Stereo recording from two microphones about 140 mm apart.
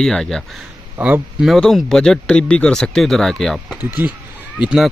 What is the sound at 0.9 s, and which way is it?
Speech, 15° right (ahead or behind).